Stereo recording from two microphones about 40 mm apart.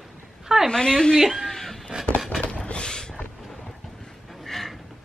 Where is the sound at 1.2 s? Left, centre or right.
Centre.